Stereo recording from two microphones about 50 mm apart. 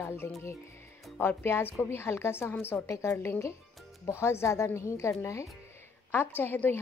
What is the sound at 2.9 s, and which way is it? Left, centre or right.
Speech, left.